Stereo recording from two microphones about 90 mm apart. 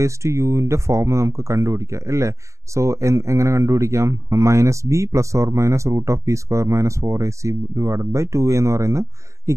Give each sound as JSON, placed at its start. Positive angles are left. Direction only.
{"t": 0.0, "sound": "speech", "side_deg": -35}